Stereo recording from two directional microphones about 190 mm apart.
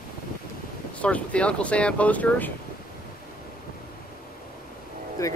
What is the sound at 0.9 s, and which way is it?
Speech, 5° left (ahead or behind).